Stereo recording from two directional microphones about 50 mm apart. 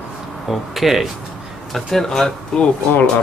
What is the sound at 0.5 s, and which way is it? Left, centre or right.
Speech, centre.